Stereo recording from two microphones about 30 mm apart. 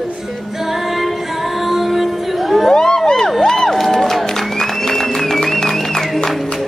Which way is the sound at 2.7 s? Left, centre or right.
Left.